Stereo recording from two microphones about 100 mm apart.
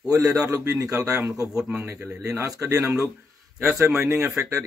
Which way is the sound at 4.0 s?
30° right (ahead or behind).